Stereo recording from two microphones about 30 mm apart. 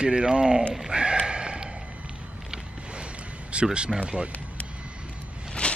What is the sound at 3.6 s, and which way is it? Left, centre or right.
Speech, right.